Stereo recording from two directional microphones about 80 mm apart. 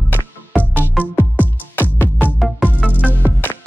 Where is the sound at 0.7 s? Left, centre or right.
Centre.